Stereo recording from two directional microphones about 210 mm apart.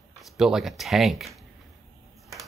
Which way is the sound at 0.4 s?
Centre (ahead or behind).